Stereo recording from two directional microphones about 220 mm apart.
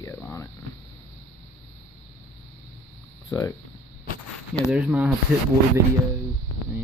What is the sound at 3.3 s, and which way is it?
Speech, 15° left (ahead or behind).